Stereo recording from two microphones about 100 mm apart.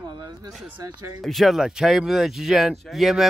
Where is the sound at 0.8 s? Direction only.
30° right (ahead or behind).